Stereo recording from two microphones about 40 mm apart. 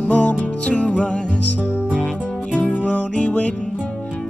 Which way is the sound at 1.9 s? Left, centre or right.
Left.